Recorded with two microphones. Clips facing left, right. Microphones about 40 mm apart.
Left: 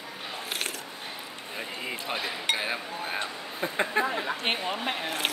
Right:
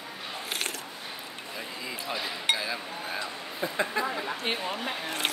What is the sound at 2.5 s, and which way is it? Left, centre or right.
Chink, left.